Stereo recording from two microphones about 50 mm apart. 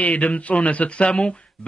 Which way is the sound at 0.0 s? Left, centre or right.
Left.